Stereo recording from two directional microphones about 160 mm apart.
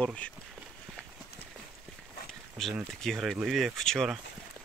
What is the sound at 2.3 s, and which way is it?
Speech, centre (ahead or behind).